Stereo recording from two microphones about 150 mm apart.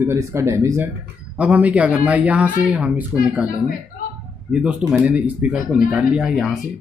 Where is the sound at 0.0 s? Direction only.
20° right (ahead or behind).